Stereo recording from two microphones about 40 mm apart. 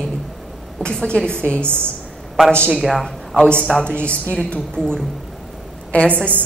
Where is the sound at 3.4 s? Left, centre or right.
Left.